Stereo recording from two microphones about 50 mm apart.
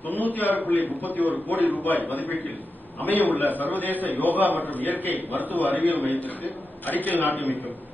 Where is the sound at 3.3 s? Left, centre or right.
Left.